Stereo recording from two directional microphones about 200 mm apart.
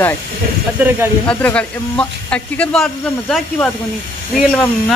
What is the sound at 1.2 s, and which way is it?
Speech, 5° left (ahead or behind).